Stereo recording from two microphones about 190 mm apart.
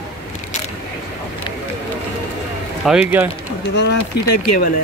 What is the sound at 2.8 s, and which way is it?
Speech, 5° right (ahead or behind).